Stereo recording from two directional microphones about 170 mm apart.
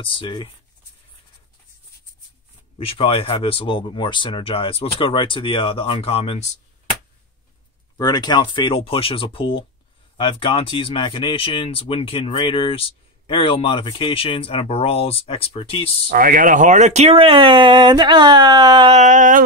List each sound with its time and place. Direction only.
0.0 s speech: 30° left (ahead or behind)
2.8 s speech: 35° left (ahead or behind)
8.0 s speech: 25° left (ahead or behind)
16.1 s speech: 55° right (ahead or behind); by 18.9 s 25° right (ahead or behind)
18.9 s a sound: 45° right (ahead or behind)